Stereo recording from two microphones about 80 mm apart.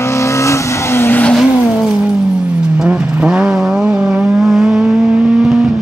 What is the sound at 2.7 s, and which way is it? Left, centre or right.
Vehicle, centre.